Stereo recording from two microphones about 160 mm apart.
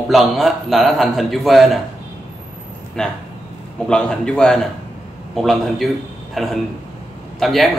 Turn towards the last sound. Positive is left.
turn(degrees=0)  # may be behind; listen again after turning